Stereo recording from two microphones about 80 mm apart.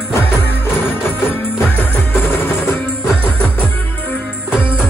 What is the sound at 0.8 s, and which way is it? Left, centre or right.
Music, left.